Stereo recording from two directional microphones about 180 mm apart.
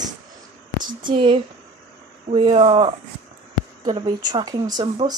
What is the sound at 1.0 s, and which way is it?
Speech, 25° right (ahead or behind).